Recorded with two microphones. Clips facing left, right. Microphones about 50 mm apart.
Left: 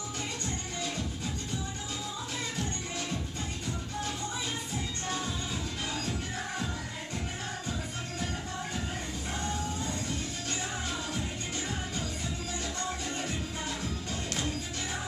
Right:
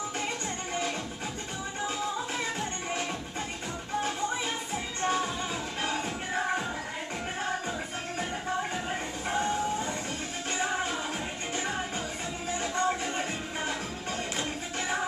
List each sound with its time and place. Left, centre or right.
5.0 s music: right
9.3 s vehicle: right
10.6 s music: right
12.7 s music: right